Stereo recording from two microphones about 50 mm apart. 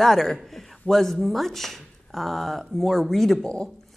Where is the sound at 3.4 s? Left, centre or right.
Centre.